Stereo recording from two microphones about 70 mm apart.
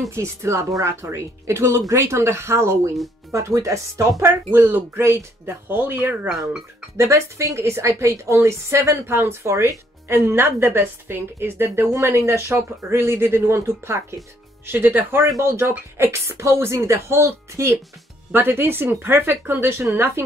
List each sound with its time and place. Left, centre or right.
0.1 s a woman's voice: right
4.2 s speech: right
6.2 s speech: centre
7.0 s a woman's voice: right
14.7 s speech: right
15.2 s a woman's voice: right
16.0 s speech: right